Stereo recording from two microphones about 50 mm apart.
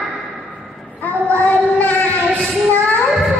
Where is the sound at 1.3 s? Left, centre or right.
Left.